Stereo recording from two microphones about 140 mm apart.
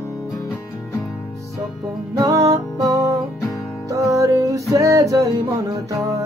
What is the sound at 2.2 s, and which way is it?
Music, 25° right (ahead or behind).